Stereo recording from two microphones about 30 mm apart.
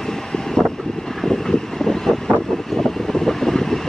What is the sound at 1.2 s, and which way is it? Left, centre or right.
Vehicle, centre.